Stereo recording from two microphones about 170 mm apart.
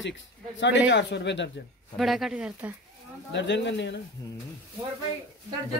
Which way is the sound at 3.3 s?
90° left.